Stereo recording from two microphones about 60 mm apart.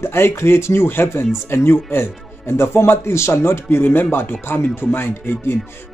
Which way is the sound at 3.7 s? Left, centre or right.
Left.